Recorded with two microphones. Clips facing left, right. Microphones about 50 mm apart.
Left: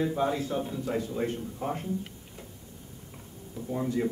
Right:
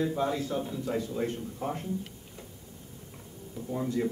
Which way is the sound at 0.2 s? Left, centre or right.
Left.